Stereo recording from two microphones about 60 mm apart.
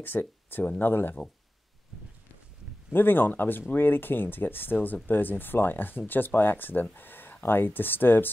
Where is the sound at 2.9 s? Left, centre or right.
Left.